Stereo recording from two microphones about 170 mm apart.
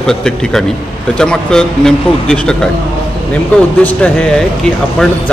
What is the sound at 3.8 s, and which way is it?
A man's voice, 10° left (ahead or behind).